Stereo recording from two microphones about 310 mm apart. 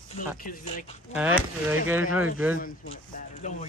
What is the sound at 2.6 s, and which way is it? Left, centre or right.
Speech, left.